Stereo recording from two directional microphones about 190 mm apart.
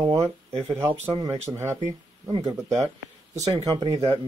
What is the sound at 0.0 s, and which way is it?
Speech, 15° right (ahead or behind).